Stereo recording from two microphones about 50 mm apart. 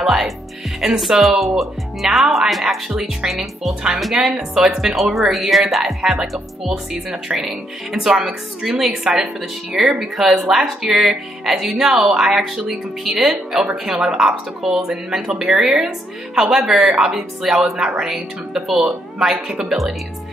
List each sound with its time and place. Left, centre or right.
0.0 s speech: centre
2.9 s speech: centre